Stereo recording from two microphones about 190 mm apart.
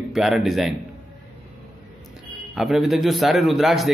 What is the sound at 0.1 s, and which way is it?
Speech, centre (ahead or behind).